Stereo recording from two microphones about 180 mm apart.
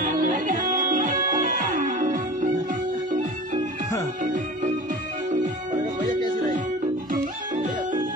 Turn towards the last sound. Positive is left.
turn(degrees=-45)  # may be behind; listen again after turning